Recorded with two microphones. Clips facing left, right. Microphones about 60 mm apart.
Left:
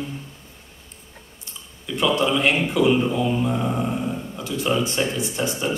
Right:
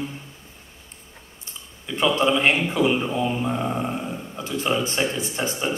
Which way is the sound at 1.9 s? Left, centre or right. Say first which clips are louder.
Even; right.